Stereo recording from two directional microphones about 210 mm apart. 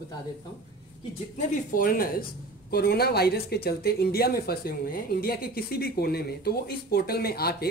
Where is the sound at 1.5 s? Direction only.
40° left (ahead or behind).